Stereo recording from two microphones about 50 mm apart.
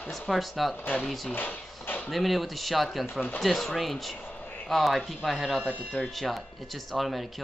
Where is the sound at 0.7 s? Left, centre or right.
Left.